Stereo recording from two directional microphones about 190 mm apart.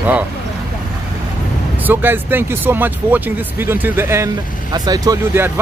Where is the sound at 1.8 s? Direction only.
10° right (ahead or behind).